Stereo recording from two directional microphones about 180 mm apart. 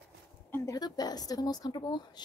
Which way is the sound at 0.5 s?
15° left (ahead or behind).